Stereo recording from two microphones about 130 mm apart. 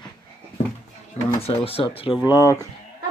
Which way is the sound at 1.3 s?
50° left (ahead or behind).